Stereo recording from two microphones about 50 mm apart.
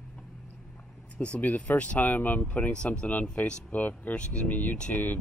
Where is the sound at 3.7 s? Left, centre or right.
Left.